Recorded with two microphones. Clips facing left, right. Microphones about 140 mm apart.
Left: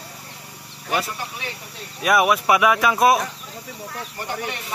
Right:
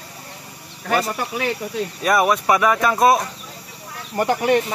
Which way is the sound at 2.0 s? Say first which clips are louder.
Even; 5° left (ahead or behind).